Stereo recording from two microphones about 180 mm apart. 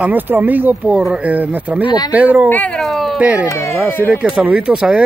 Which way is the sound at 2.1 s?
10° right (ahead or behind).